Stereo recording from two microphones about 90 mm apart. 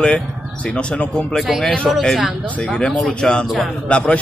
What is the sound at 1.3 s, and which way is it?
Speech, centre (ahead or behind).